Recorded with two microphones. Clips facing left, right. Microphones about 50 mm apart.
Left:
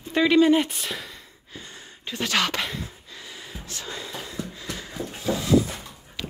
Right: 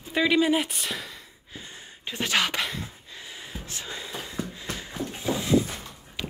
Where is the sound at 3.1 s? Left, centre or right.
Right.